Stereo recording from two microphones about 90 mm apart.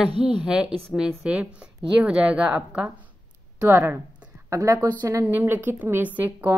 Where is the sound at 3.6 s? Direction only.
25° right (ahead or behind).